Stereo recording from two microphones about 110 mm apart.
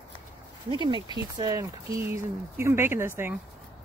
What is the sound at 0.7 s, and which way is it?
Speech, 45° right (ahead or behind).